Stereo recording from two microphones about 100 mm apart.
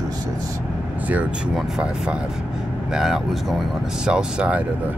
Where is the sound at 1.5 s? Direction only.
5° right (ahead or behind).